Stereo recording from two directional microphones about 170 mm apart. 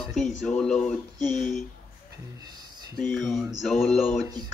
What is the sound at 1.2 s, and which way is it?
Speech, 45° left (ahead or behind).